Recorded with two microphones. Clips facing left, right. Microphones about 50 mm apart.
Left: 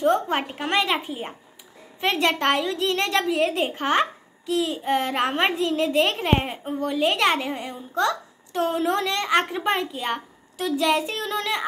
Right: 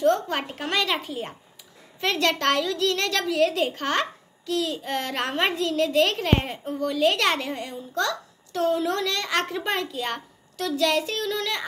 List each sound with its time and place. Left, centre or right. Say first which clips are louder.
0.0 s a woman's voice: left 1 dB; left